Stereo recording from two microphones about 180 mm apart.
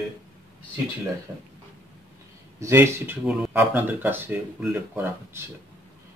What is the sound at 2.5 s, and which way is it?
Speech, 15° right (ahead or behind).